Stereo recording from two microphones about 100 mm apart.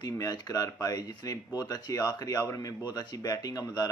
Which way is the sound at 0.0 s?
40° left (ahead or behind).